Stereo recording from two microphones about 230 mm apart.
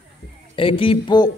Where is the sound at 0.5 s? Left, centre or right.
Left.